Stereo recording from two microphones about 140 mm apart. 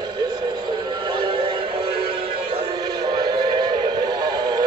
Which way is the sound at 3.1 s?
30° right (ahead or behind).